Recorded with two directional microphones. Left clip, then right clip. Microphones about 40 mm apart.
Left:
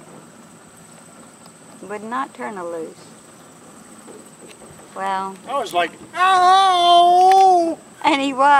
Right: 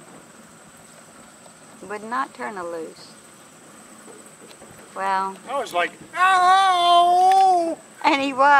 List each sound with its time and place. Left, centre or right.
1.9 s speech: right
4.9 s speech: right
5.5 s speech: centre
8.0 s speech: right